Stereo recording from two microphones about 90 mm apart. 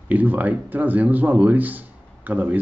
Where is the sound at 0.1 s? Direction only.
20° right (ahead or behind).